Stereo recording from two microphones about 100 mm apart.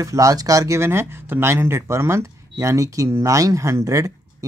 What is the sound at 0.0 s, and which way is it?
Speech, 35° right (ahead or behind).